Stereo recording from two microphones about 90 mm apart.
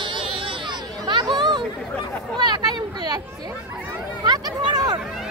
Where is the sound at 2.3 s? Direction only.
55° right (ahead or behind).